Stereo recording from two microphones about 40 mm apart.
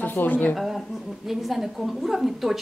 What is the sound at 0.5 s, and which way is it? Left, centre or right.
A woman's voice, centre.